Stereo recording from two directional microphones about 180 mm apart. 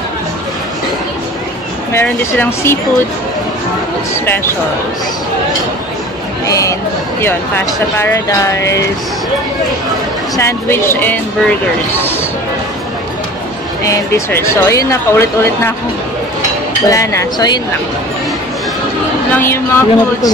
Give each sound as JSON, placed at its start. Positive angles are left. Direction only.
{"t": 1.9, "sound": "speech", "side_deg": 15}
{"t": 7.2, "sound": "speech", "side_deg": 10}
{"t": 10.3, "sound": "speech", "side_deg": 15}
{"t": 13.8, "sound": "speech", "side_deg": 15}
{"t": 16.8, "sound": "speech", "side_deg": 20}
{"t": 19.3, "sound": "speech", "side_deg": 15}